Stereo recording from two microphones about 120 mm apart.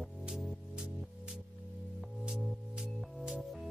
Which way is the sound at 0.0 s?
5° right (ahead or behind).